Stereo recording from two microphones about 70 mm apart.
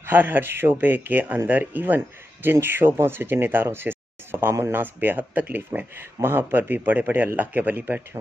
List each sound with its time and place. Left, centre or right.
0.0 s speech: right